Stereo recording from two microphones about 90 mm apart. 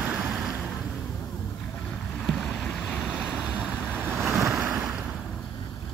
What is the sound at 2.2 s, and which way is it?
Boat, 5° left (ahead or behind).